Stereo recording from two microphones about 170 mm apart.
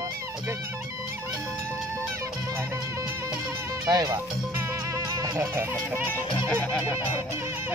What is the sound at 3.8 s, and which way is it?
Speech, 20° right (ahead or behind).